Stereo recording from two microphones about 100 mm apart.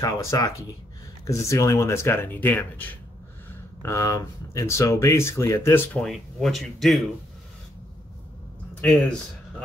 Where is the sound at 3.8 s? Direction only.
30° left (ahead or behind).